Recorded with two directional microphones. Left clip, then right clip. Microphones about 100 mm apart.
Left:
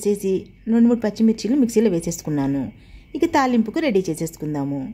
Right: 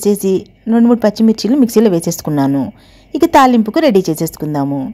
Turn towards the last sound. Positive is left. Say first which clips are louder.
# right 8 dB
turn(degrees=-35)  # may be behind; listen again after turning